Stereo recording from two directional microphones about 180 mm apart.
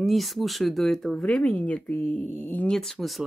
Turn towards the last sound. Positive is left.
turn(degrees=0)  # may be behind; listen again after turning